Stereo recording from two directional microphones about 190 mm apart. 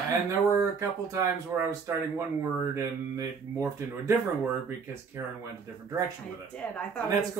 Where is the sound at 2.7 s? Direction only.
15° right (ahead or behind).